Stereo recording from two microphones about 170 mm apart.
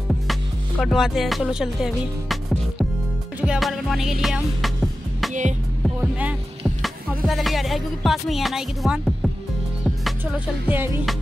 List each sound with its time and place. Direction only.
0.3 s music: centre (ahead or behind)
5.3 s music: 45° right (ahead or behind)
5.9 s speech: 10° right (ahead or behind)
7.2 s music: centre (ahead or behind)